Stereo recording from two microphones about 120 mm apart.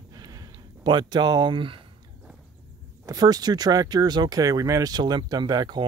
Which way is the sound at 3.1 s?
30° right (ahead or behind).